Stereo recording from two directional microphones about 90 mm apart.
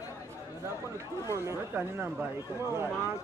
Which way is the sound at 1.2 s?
35° right (ahead or behind).